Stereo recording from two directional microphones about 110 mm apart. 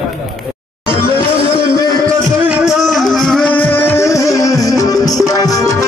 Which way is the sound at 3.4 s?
15° left (ahead or behind).